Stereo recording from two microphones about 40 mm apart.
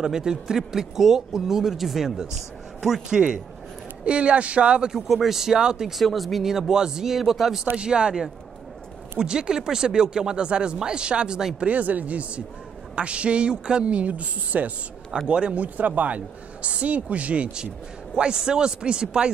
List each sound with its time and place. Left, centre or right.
0.0 s speech: centre
4.0 s speech: right
5.0 s speech: centre
5.9 s speech: centre
6.7 s speech: centre
7.7 s speech: right
11.6 s speech: right
15.2 s speech: right
15.5 s speech: right
18.1 s speech: right